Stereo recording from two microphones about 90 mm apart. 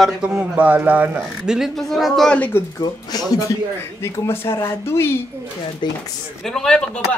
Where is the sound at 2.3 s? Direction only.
20° left (ahead or behind).